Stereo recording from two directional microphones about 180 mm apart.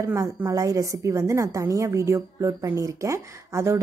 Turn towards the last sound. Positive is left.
turn(degrees=-15)  # may be behind; listen again after turning